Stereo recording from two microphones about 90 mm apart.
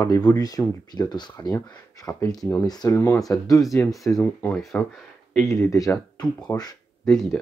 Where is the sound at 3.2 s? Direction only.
40° left (ahead or behind).